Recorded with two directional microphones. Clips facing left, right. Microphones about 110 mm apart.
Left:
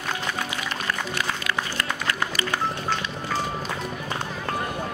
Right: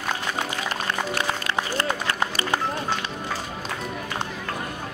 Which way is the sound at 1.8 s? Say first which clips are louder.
Right 2 dB; 30° right (ahead or behind).